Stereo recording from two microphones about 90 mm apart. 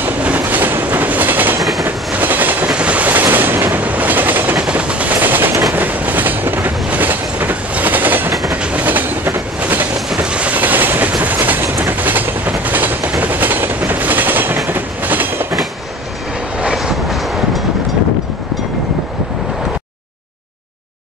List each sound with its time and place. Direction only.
0.0 s train: 20° right (ahead or behind)
1.6 s train: centre (ahead or behind)
2.1 s train: 20° right (ahead or behind)
10.0 s train: 10° right (ahead or behind)
16.5 s train: 10° right (ahead or behind)